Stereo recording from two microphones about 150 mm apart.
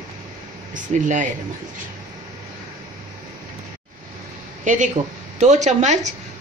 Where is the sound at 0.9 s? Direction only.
60° right (ahead or behind).